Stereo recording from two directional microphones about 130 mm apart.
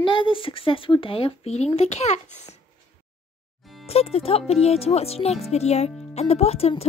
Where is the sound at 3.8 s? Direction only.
50° left (ahead or behind).